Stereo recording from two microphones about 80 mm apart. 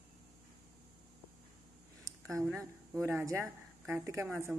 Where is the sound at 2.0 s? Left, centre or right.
Right.